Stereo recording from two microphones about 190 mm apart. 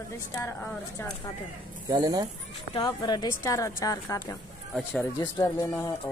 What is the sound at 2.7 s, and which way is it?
A woman's voice, 25° left (ahead or behind).